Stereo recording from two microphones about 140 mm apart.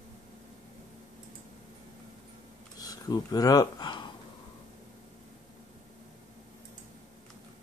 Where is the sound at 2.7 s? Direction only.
25° left (ahead or behind).